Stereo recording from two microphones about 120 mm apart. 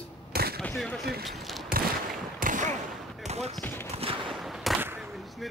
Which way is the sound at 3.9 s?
50° right (ahead or behind).